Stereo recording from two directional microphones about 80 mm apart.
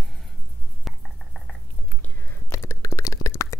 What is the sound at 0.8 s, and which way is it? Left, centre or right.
Mouse, centre.